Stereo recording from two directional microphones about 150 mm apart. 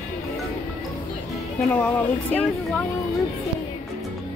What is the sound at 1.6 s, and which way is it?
Speech, 10° left (ahead or behind).